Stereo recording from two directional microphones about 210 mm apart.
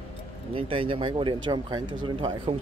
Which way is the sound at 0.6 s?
25° right (ahead or behind).